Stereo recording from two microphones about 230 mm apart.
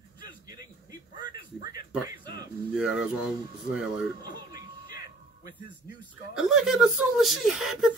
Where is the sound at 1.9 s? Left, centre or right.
Centre.